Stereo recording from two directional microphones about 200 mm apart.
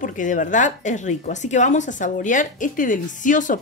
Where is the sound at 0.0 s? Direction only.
40° left (ahead or behind).